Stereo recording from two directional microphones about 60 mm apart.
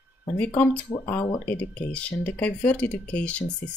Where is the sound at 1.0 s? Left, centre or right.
Left.